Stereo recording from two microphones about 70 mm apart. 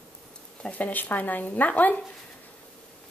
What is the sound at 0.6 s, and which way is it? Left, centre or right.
Speech, left.